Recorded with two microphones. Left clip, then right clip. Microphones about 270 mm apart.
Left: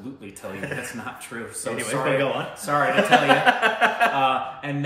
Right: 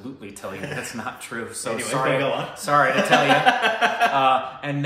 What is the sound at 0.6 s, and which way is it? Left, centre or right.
A man's voice, centre.